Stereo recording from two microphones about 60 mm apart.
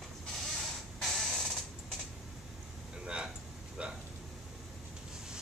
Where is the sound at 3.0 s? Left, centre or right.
Centre.